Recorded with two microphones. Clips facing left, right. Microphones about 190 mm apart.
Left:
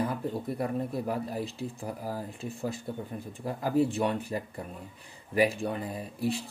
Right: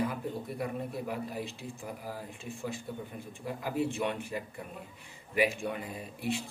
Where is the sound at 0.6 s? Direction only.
40° left (ahead or behind).